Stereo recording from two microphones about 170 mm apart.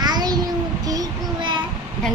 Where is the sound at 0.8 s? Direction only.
25° right (ahead or behind).